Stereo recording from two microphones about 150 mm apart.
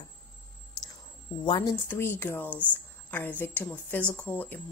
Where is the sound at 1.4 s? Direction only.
30° left (ahead or behind).